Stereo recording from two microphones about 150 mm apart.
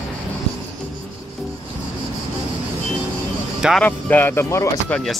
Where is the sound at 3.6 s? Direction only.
5° right (ahead or behind).